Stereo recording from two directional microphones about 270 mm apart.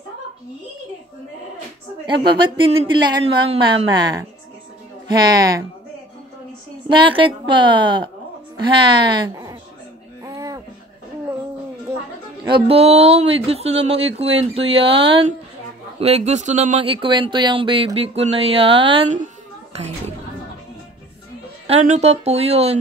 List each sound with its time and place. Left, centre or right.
2.2 s speech: centre
6.9 s a woman's voice: centre
10.2 s a sound: centre
12.4 s speech: centre
21.6 s speech: right